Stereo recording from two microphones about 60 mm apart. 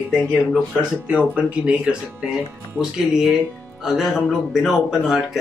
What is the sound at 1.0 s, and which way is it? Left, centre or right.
Speech, right.